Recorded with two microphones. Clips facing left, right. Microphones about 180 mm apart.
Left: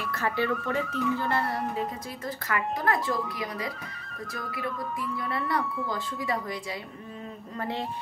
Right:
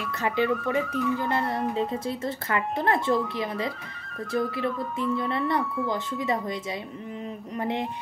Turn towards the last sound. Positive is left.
turn(degrees=-20)  # may be behind; listen again after turning